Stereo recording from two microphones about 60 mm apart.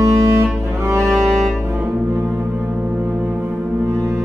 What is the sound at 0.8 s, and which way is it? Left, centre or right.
Music, right.